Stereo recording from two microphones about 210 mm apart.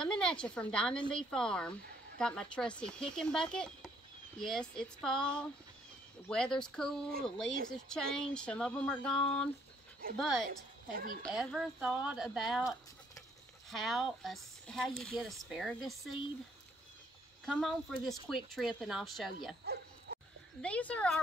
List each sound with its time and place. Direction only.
0.0 s speech: 5° left (ahead or behind)
17.5 s speech: centre (ahead or behind)
19.6 s a sound: 50° right (ahead or behind)
20.6 s speech: 5° left (ahead or behind)